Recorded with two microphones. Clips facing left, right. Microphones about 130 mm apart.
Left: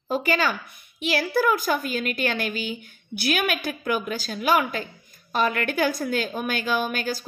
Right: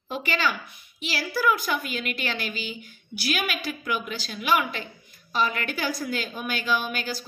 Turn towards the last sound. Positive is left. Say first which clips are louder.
# left 2 dB
turn(degrees=50)  # may be behind; listen again after turning